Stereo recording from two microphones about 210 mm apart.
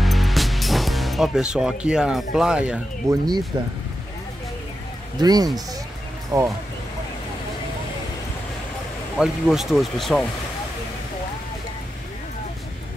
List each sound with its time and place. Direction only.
0.0 s speech: centre (ahead or behind)
3.5 s speech: 20° right (ahead or behind)
5.2 s speech: 20° right (ahead or behind)
9.2 s speech: centre (ahead or behind)